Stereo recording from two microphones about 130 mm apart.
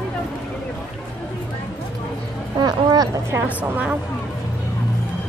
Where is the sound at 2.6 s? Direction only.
30° right (ahead or behind).